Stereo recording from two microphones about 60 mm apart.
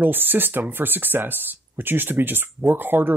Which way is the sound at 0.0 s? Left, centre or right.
Right.